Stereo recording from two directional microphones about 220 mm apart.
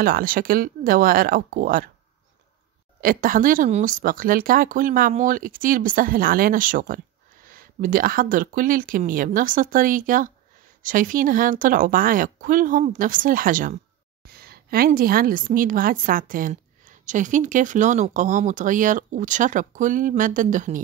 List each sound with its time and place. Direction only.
0.0 s speech: 40° right (ahead or behind)
3.0 s speech: 40° right (ahead or behind)